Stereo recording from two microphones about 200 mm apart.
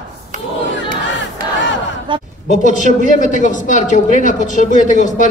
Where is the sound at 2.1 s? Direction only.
25° right (ahead or behind).